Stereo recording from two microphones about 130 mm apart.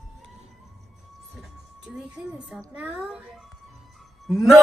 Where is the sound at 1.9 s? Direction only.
5° right (ahead or behind).